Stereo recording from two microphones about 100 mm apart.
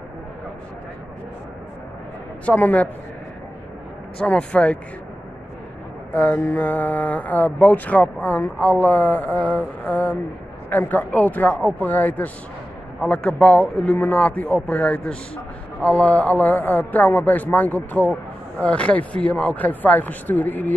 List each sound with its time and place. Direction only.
2.4 s speech: 15° left (ahead or behind)
4.2 s speech: 10° left (ahead or behind)
6.1 s speech: 15° left (ahead or behind)